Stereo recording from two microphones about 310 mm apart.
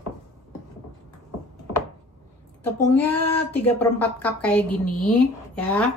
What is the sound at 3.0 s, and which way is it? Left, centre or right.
Speech, left.